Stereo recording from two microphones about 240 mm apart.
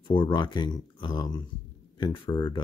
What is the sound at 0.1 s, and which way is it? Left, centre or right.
Speech, centre.